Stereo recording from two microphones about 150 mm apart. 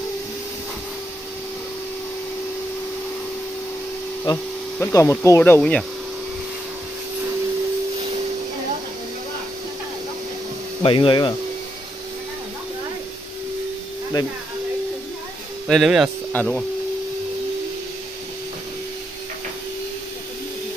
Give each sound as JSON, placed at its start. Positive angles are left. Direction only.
{"t": 4.3, "sound": "speech", "side_deg": 30}
{"t": 4.7, "sound": "speech", "side_deg": 20}
{"t": 5.6, "sound": "speech", "side_deg": 5}
{"t": 10.8, "sound": "speech", "side_deg": 35}
{"t": 15.7, "sound": "speech", "side_deg": 0}